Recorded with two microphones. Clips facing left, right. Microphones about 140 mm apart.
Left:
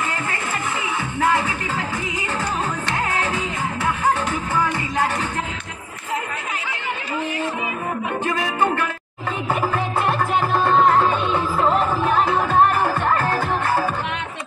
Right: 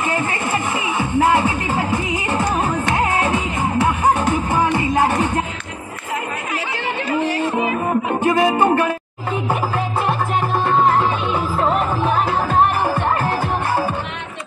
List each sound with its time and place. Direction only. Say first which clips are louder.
0.3 s music: right 5 dB; 20° right (ahead or behind)
3.1 s music: right 4 dB; 20° right (ahead or behind)
7.2 s music: right 6 dB; 35° right (ahead or behind)
8.2 s music: right 8 dB; 20° right (ahead or behind)
8.5 s music: right 5 dB; 35° right (ahead or behind)
12.8 s music: right 1 dB; 15° right (ahead or behind)